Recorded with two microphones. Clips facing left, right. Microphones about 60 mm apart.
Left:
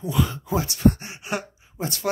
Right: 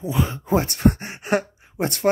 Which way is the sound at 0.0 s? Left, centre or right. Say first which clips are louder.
Right 1 dB; right.